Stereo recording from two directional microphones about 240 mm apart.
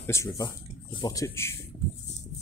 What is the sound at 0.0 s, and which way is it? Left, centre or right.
Speech, centre.